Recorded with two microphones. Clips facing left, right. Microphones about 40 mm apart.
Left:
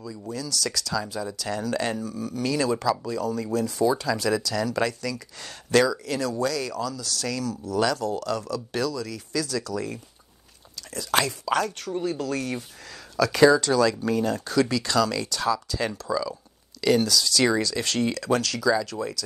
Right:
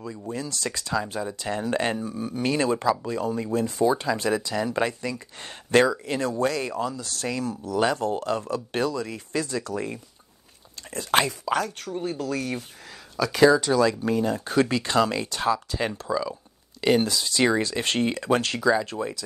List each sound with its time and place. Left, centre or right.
0.3 s speech: right
11.2 s speech: centre
13.1 s speech: centre
14.4 s speech: right